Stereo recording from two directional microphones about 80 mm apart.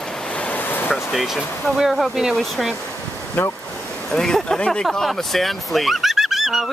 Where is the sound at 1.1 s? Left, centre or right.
Centre.